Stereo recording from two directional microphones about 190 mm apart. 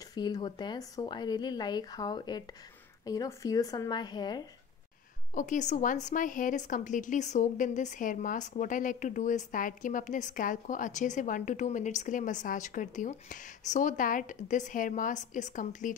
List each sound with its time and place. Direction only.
0.1 s a woman's voice: 20° left (ahead or behind)
5.3 s a woman's voice: 40° left (ahead or behind)